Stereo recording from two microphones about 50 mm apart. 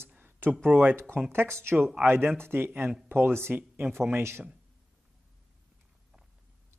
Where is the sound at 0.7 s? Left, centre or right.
Right.